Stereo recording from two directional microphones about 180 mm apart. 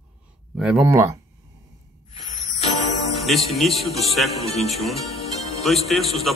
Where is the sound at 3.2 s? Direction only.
Centre (ahead or behind).